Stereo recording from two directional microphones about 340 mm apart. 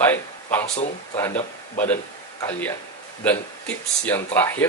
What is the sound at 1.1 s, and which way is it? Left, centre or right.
Speech, centre.